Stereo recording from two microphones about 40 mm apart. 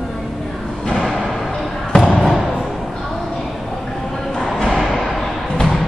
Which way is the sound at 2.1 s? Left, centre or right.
Centre.